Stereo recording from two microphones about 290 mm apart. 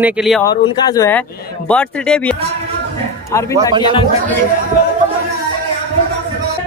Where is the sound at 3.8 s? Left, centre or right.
Centre.